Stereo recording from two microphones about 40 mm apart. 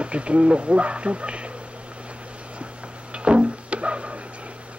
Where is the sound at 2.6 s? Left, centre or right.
Right.